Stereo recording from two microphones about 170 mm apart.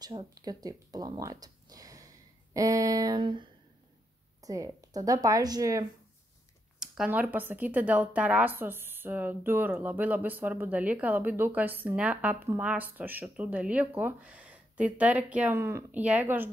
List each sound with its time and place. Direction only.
0.0 s speech: 20° right (ahead or behind)
6.8 s speech: 5° right (ahead or behind)